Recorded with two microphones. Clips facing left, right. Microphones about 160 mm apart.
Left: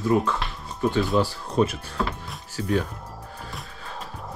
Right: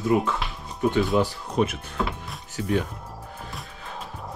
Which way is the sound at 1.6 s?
10° right (ahead or behind).